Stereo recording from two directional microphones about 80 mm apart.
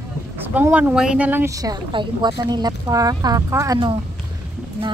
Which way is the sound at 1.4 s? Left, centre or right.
Right.